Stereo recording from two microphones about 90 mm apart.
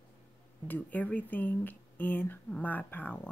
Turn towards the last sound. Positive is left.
turn(degrees=20)  # may be behind; listen again after turning